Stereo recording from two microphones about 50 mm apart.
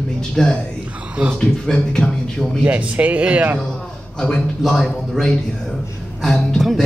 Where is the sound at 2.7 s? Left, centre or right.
Right.